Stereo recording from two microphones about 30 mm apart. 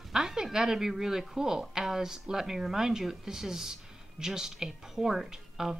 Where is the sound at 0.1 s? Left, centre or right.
Centre.